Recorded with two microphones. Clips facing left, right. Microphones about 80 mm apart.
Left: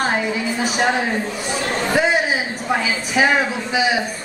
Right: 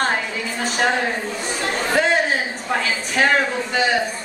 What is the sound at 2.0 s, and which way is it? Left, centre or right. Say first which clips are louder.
Chatter: even; centre.